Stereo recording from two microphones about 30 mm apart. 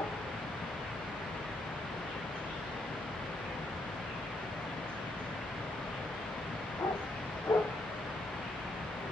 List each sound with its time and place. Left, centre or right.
7.5 s bow-wow: left